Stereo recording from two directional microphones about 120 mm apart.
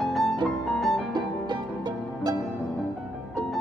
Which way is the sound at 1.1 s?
35° right (ahead or behind).